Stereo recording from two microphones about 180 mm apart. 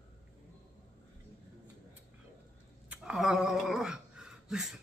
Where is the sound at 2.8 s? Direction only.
5° right (ahead or behind).